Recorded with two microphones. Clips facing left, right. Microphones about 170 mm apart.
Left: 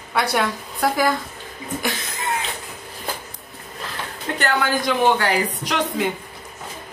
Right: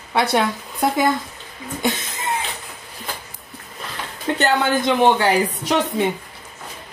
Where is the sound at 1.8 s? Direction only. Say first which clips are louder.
Right 6 dB; 20° right (ahead or behind).